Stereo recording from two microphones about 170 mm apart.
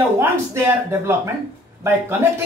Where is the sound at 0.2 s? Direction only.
15° right (ahead or behind).